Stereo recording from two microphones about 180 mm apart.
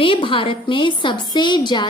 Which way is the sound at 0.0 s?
30° left (ahead or behind).